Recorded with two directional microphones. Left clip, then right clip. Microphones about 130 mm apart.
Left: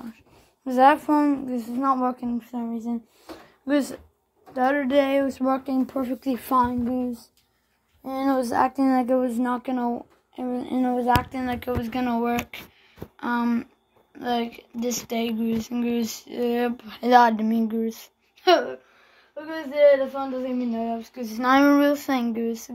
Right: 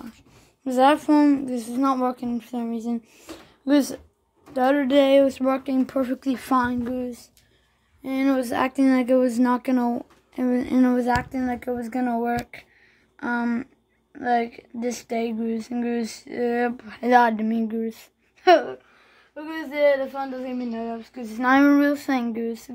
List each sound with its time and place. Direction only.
0.7 s a woman's voice: 25° right (ahead or behind)
2.3 s speech: 50° right (ahead or behind)
3.6 s a woman's voice: 30° right (ahead or behind)
8.1 s speech: 45° right (ahead or behind)
8.5 s speech: 20° right (ahead or behind)
9.3 s speech: 50° right (ahead or behind); by 11.1 s 80° right
11.3 s speech: 50° right (ahead or behind)
13.2 s speech: 65° right (ahead or behind)
14.1 s speech: 55° right (ahead or behind)
19.5 s a woman's voice: 35° right (ahead or behind)
21.0 s speech: 45° right (ahead or behind)